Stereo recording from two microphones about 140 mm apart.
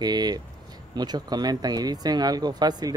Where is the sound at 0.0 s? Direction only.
30° right (ahead or behind).